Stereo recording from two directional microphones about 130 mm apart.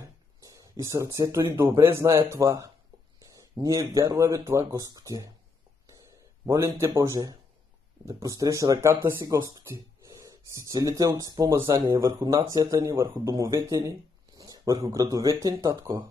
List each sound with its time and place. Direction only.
0.0 s a sound: 25° right (ahead or behind)
1.8 s speech: 20° right (ahead or behind)
6.4 s speech: 25° right (ahead or behind)